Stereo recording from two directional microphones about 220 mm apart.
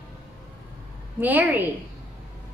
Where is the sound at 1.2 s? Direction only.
10° right (ahead or behind).